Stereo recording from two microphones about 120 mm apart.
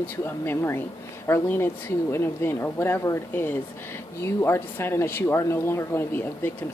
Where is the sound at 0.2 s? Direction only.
20° left (ahead or behind).